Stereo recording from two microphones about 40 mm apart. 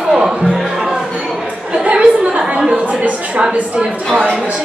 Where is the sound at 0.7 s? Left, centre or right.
Centre.